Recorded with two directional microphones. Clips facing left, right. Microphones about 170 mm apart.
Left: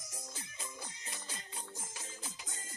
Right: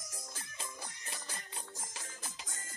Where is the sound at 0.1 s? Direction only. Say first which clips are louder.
Even; 20° left (ahead or behind).